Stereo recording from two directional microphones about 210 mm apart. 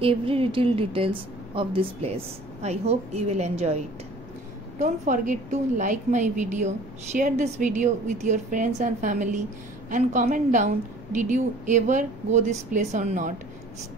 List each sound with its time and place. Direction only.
0.0 s a woman's voice: 25° right (ahead or behind)